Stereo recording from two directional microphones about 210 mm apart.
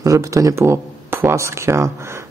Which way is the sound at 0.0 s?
15° right (ahead or behind).